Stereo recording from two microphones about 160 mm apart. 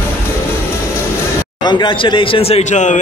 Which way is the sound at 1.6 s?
30° left (ahead or behind).